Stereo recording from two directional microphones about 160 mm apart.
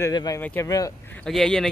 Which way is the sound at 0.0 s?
25° left (ahead or behind).